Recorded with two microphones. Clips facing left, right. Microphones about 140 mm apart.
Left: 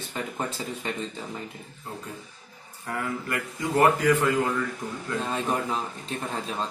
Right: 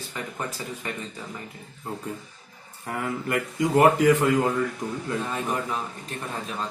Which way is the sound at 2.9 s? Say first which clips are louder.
Right 3 dB; 30° right (ahead or behind).